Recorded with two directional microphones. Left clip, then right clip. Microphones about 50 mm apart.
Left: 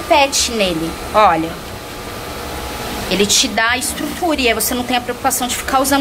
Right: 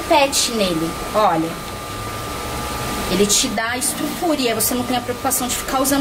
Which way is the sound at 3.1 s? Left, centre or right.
Left.